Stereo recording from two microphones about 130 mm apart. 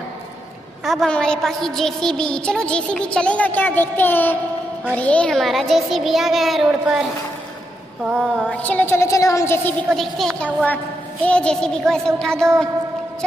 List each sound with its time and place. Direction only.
0.8 s a woman's voice: 5° left (ahead or behind)
8.2 s a woman's voice: 5° left (ahead or behind)
9.9 s a child's voice: centre (ahead or behind)